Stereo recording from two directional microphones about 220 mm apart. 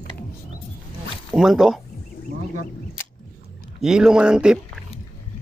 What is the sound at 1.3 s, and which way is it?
Speech, centre (ahead or behind).